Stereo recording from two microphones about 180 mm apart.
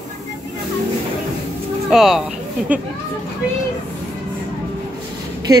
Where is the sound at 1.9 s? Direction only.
Centre (ahead or behind).